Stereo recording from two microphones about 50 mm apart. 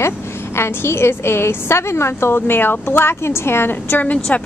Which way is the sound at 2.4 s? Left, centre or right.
Left.